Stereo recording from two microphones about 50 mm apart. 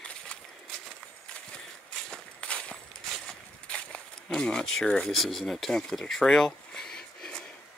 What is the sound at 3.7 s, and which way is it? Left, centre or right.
Speech, centre.